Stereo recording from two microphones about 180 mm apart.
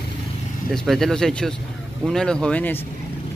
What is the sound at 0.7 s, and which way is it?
Speech, centre (ahead or behind).